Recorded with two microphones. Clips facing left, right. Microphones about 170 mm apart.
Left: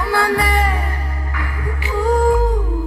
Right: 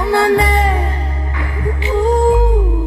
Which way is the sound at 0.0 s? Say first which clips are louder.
Right 5 dB; 20° right (ahead or behind).